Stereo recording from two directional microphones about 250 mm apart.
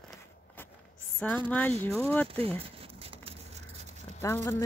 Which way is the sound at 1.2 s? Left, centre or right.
Centre.